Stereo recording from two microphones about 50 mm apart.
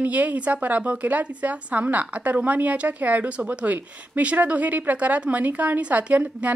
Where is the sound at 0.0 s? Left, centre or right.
Right.